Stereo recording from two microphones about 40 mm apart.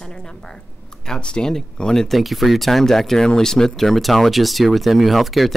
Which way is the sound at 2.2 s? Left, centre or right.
Centre.